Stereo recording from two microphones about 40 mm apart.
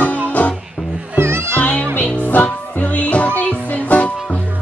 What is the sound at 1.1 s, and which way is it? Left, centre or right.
Music, right.